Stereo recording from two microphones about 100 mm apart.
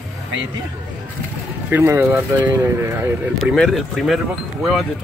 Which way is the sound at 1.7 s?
25° right (ahead or behind).